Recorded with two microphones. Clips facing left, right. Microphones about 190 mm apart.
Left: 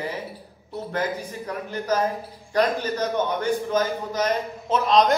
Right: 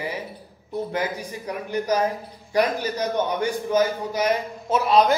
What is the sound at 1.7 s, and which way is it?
A man's voice, 15° right (ahead or behind).